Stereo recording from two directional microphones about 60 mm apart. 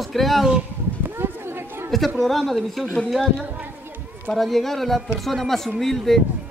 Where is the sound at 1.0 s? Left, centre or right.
Right.